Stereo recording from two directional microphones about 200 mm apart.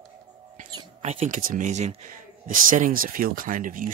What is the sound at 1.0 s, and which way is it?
Speech, 35° right (ahead or behind).